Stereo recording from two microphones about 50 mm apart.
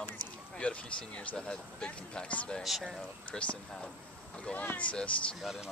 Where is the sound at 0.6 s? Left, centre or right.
Left.